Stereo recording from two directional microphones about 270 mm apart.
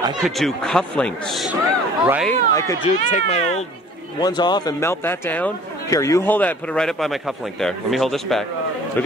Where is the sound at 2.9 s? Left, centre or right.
Left.